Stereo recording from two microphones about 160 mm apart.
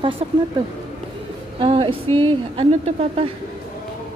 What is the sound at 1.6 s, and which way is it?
Speech, 35° right (ahead or behind).